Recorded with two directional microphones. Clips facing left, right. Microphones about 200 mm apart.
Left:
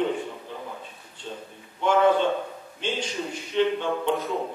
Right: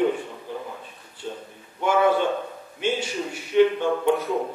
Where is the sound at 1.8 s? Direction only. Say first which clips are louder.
Even; 10° right (ahead or behind).